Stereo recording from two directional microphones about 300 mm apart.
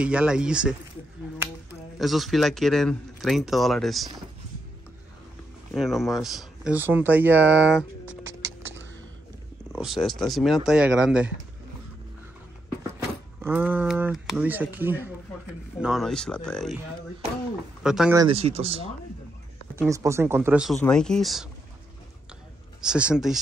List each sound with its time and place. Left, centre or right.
0.0 s a man's voice: centre
2.0 s a man's voice: centre
5.7 s a man's voice: centre
9.7 s a man's voice: centre
13.4 s a man's voice: centre
17.8 s speech: centre
19.7 s a man's voice: centre
22.8 s a man's voice: centre